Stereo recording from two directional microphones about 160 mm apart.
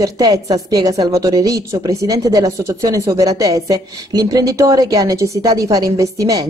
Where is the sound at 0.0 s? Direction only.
20° right (ahead or behind).